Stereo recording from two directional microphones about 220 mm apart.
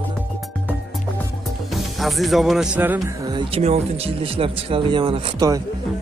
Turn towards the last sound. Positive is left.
turn(degrees=-20)  # may be behind; listen again after turning